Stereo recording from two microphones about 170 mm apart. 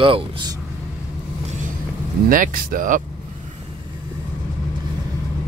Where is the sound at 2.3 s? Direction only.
55° right (ahead or behind).